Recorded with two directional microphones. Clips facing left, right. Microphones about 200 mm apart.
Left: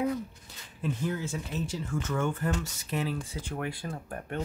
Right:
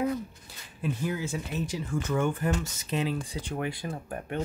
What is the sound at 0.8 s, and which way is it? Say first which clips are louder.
Speech: right 1 dB; 10° right (ahead or behind).